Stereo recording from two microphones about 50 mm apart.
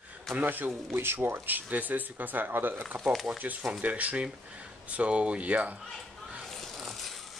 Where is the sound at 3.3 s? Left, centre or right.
Right.